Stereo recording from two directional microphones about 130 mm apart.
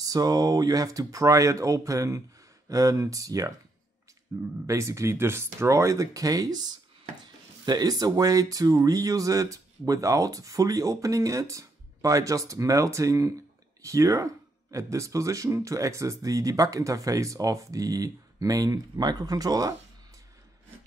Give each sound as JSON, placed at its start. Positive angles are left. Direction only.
{"t": 0.0, "sound": "speech", "side_deg": -30}